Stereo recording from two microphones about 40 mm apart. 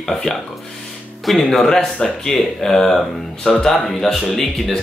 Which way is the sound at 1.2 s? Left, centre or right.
Centre.